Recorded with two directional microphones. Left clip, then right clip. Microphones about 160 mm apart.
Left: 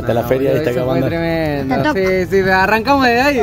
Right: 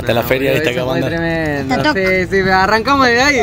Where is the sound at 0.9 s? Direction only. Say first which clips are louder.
Even; 75° left (ahead or behind).